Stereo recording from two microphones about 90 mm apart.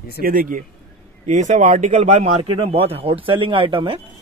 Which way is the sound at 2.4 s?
90° right.